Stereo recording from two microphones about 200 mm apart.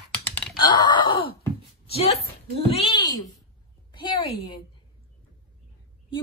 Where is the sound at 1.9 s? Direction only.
30° left (ahead or behind).